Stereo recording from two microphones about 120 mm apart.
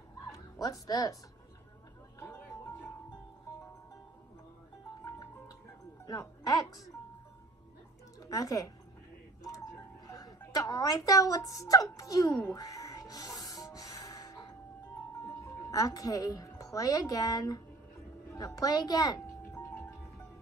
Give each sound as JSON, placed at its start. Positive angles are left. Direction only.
{"t": 0.3, "sound": "music", "side_deg": 30}
{"t": 6.0, "sound": "speech", "side_deg": 30}
{"t": 8.2, "sound": "speech", "side_deg": 30}
{"t": 10.0, "sound": "music", "side_deg": 30}
{"t": 15.7, "sound": "a woman's voice", "side_deg": 30}
{"t": 19.5, "sound": "music", "side_deg": 15}